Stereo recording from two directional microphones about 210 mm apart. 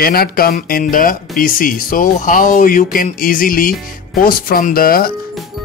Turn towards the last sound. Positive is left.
turn(degrees=45)  # may be behind; listen again after turning